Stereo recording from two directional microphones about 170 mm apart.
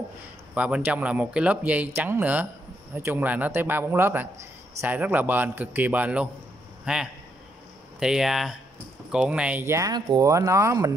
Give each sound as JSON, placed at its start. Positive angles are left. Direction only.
{"t": 0.6, "sound": "a man's voice", "side_deg": -5}